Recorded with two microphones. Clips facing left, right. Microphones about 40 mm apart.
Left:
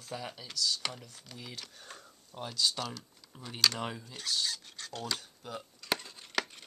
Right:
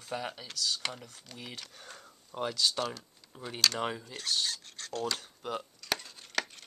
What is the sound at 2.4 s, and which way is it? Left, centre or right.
Speech, right.